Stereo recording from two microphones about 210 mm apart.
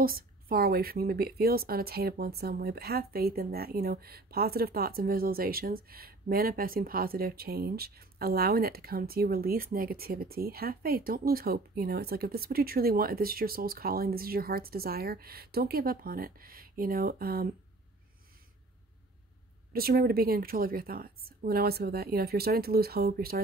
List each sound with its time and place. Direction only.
0.0 s speech: 45° right (ahead or behind)
19.7 s speech: 45° right (ahead or behind)